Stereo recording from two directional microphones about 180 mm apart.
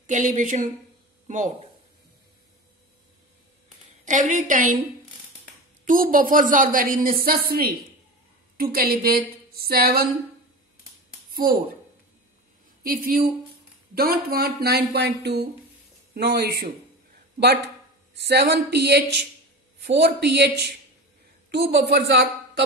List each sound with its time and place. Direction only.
0.0 s speech: 45° right (ahead or behind)
4.0 s speech: 45° right (ahead or behind)
5.9 s speech: 50° right (ahead or behind)
12.8 s speech: 50° right (ahead or behind)
18.2 s a woman's voice: 65° right (ahead or behind)